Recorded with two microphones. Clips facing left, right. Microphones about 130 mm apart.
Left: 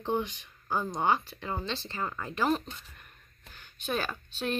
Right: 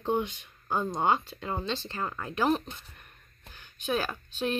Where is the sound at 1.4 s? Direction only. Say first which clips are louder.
Right 2 dB; 10° right (ahead or behind).